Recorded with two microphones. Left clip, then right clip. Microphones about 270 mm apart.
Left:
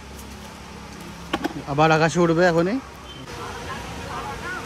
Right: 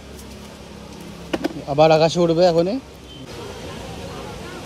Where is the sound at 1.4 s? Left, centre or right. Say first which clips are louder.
Right 5 dB; centre.